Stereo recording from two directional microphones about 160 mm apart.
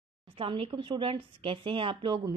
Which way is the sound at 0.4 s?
35° right (ahead or behind).